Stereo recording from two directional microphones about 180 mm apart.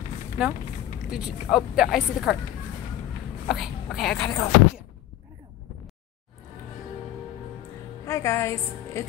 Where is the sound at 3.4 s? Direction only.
Centre (ahead or behind).